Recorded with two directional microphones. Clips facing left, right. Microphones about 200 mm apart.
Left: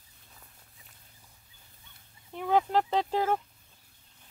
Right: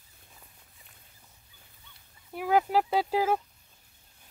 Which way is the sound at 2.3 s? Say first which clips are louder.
Right 1 dB; 5° right (ahead or behind).